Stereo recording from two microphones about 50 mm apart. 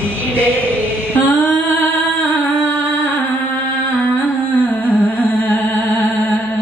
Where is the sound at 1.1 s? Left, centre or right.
Left.